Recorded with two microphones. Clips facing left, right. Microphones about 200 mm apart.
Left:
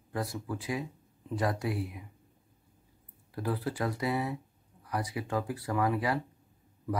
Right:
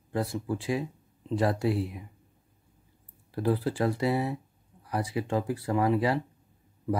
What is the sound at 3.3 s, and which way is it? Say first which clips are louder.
Speech: right 6 dB; 30° right (ahead or behind).